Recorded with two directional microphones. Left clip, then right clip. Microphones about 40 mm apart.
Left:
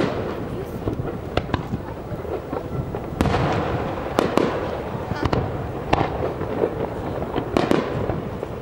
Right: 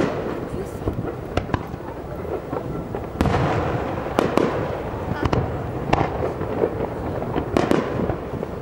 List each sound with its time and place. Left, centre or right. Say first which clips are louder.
0.0 s fireworks: even; centre
3.2 s fireworks: even; centre
6.1 s fireworks: even; centre
7.3 s fireworks: even; centre